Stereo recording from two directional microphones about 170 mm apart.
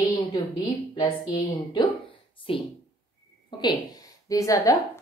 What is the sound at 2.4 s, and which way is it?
Speech, 30° left (ahead or behind).